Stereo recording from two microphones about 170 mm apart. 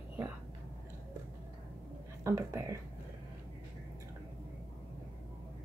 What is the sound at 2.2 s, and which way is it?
Speech, 15° right (ahead or behind).